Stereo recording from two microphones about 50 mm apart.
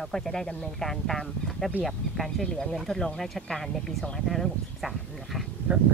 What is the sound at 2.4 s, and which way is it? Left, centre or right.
Speech, centre.